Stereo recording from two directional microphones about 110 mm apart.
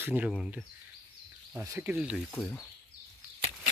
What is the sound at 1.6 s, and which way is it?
Speech, 25° right (ahead or behind).